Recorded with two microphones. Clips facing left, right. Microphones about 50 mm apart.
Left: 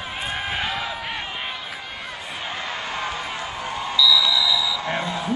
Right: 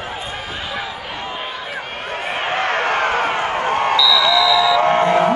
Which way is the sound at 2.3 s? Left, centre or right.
Right.